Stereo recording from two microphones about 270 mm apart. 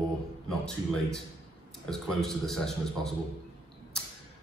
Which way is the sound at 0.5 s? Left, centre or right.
Centre.